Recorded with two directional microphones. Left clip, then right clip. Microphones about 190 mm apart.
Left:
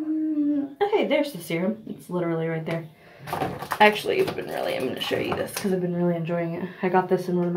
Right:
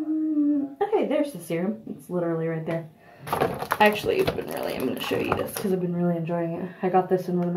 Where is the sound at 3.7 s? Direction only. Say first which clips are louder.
Left 2 dB; 25° right (ahead or behind).